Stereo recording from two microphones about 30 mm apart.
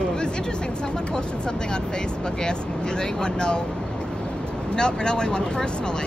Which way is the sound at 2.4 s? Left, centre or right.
Left.